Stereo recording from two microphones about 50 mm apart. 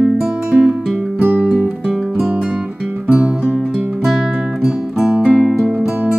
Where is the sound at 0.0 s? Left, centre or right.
Centre.